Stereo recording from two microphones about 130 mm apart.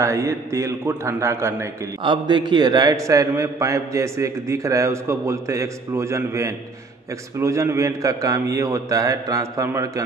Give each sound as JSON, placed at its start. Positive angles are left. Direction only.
{"t": 0.0, "sound": "a man's voice", "side_deg": -20}
{"t": 2.0, "sound": "a man's voice", "side_deg": -35}